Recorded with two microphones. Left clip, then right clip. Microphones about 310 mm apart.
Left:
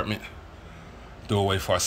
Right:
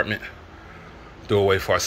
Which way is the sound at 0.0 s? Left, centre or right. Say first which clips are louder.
Right 6 dB; centre.